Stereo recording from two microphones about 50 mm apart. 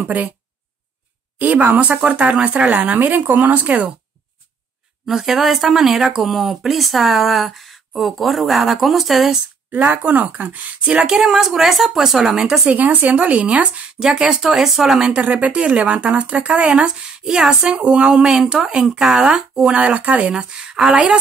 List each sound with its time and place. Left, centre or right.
0.0 s speech: right
1.4 s speech: right
5.1 s speech: centre
9.7 s speech: right; by 12.7 s centre
12.7 s speech: right
14.2 s speech: centre
15.1 s speech: right
20.3 s speech: centre